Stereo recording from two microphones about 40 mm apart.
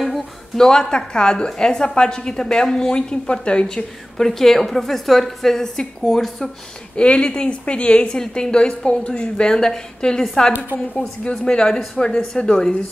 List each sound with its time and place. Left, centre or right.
0.6 s a woman's voice: centre
4.3 s a woman's voice: centre
7.0 s a woman's voice: left
11.4 s a woman's voice: centre